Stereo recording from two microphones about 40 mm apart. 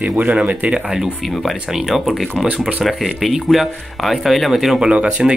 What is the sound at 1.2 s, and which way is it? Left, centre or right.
Speech, centre.